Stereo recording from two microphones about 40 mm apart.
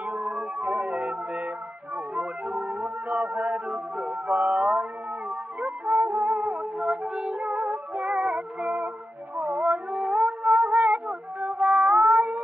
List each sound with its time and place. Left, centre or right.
0.0 s music: right
3.5 s music: right
4.3 s mantra: right
5.9 s music: right
9.4 s a sound: right
10.4 s music: right